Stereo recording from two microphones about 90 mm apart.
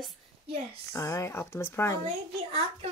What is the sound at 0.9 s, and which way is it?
Speech, 35° left (ahead or behind).